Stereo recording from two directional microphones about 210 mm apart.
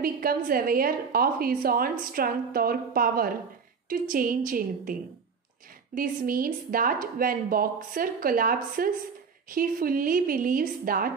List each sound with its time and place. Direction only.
0.0 s a woman's voice: 45° right (ahead or behind)
5.9 s a woman's voice: 40° right (ahead or behind)